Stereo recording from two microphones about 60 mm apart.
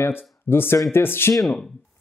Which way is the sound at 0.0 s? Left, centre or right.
Left.